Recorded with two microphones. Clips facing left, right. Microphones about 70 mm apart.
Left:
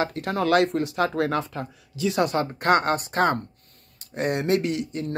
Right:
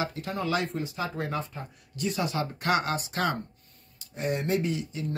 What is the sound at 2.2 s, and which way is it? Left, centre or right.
Speech, left.